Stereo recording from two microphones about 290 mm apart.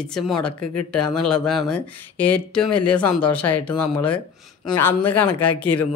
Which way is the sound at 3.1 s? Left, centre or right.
Centre.